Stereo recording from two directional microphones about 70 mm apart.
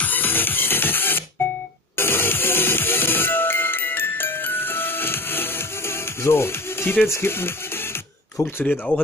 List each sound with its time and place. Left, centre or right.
0.0 s music: left
8.6 s speech: centre